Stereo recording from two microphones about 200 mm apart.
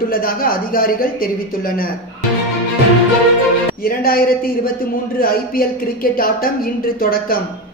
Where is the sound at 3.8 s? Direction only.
50° left (ahead or behind).